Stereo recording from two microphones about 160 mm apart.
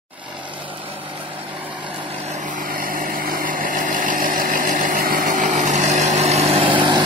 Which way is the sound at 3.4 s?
55° right (ahead or behind).